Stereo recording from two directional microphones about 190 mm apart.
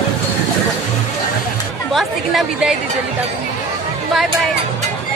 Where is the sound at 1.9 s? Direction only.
Centre (ahead or behind).